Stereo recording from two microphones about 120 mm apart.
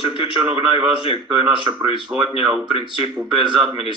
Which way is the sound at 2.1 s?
10° right (ahead or behind).